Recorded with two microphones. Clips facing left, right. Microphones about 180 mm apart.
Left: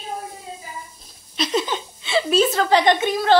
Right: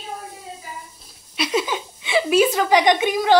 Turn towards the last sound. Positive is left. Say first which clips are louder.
# even
turn(degrees=-15)  # may be behind; listen again after turning